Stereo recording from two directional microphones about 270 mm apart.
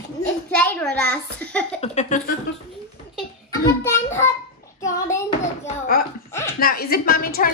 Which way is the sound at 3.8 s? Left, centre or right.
Centre.